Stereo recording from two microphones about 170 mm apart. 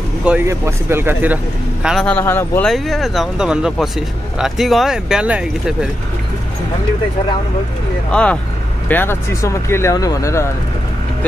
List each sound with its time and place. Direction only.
0.2 s a man's voice: 10° right (ahead or behind)
2.0 s speech: 10° left (ahead or behind)
2.7 s speech: centre (ahead or behind)
8.1 s speech: 5° left (ahead or behind)